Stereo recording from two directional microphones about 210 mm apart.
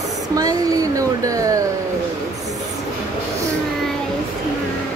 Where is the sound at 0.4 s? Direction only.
15° right (ahead or behind).